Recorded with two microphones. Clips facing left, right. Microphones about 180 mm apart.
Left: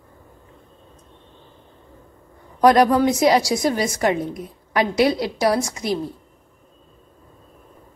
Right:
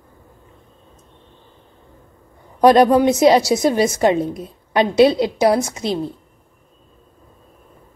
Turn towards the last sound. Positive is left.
turn(degrees=-25)  # may be behind; listen again after turning